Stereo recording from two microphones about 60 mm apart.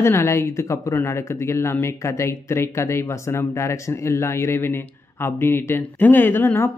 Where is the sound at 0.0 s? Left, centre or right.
Left.